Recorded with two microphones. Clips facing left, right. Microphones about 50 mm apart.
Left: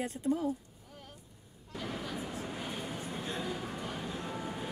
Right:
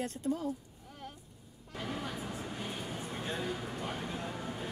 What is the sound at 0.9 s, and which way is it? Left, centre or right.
Vehicle, right.